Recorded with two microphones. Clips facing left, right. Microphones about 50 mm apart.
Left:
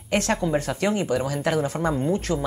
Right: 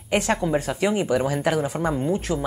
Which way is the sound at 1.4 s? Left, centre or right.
Centre.